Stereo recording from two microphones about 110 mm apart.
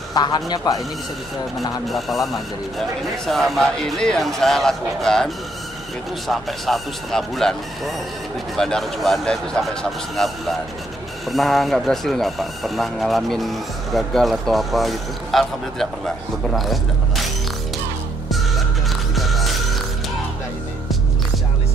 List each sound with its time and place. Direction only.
0.1 s a man's voice: 40° left (ahead or behind)
1.9 s speech: centre (ahead or behind)
3.3 s speech: centre (ahead or behind)
11.2 s speech: centre (ahead or behind)
19.1 s music: centre (ahead or behind)